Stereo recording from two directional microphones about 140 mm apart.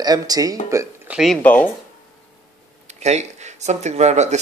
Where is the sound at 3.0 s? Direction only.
55° right (ahead or behind).